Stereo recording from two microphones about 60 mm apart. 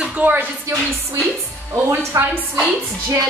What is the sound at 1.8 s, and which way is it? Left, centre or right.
Speech, right.